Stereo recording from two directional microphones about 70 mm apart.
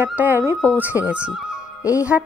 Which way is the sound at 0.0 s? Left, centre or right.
Right.